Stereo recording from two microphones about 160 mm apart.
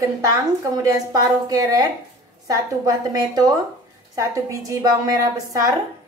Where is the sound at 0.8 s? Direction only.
20° right (ahead or behind).